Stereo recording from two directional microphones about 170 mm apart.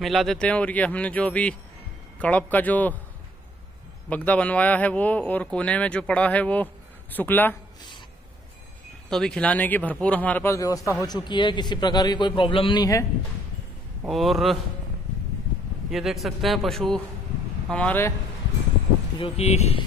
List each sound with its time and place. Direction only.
0.0 s a man's voice: centre (ahead or behind)
4.1 s a man's voice: 10° left (ahead or behind)
9.1 s a man's voice: 5° left (ahead or behind); by 13.0 s 20° left (ahead or behind)
14.0 s a man's voice: centre (ahead or behind)
15.9 s a man's voice: centre (ahead or behind)
19.1 s speech: 35° left (ahead or behind)